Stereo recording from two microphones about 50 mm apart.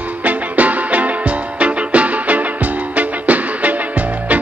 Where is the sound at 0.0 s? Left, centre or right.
Right.